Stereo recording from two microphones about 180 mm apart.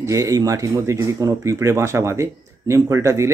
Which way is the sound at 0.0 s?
20° right (ahead or behind).